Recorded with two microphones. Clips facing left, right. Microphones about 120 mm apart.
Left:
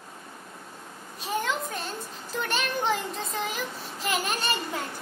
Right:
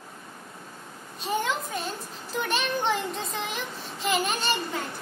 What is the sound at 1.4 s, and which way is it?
A child's voice, centre (ahead or behind).